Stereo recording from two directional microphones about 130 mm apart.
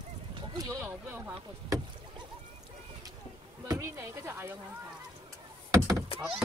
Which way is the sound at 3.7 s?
20° right (ahead or behind).